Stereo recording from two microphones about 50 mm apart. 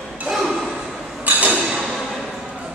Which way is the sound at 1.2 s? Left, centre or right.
Right.